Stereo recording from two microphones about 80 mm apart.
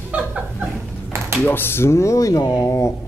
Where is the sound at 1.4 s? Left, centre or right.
Left.